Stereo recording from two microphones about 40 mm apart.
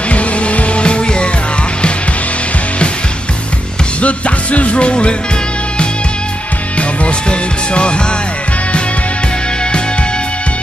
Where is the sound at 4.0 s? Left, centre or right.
Left.